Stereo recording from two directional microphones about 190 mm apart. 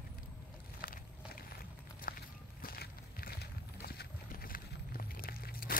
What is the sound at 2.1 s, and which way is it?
Walk, 45° left (ahead or behind).